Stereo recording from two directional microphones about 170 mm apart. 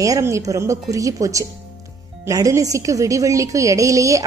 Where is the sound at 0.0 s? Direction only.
20° right (ahead or behind).